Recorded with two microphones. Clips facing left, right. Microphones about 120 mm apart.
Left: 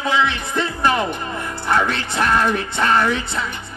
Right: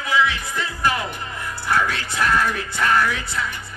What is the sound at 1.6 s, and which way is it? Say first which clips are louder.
Speech: left 2 dB; 25° left (ahead or behind).